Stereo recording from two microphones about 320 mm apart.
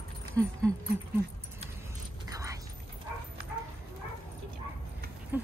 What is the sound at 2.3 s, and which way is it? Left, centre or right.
Dog, centre.